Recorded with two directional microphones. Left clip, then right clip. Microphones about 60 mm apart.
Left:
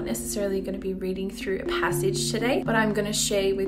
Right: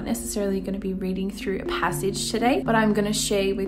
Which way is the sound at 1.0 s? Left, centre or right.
Right.